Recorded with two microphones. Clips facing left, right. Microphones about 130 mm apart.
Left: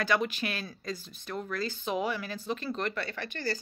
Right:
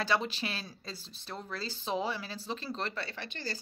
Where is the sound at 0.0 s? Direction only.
30° right (ahead or behind).